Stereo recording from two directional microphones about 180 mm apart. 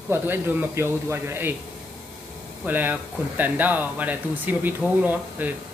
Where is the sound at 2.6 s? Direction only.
10° right (ahead or behind).